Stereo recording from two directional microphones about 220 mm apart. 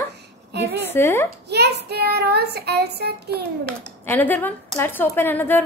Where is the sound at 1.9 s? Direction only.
45° right (ahead or behind).